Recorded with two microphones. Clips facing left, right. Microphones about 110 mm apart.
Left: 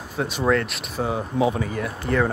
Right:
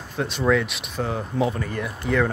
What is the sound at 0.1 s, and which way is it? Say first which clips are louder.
Speech: even; 5° left (ahead or behind).